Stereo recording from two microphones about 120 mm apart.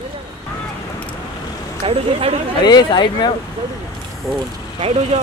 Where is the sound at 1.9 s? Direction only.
55° right (ahead or behind).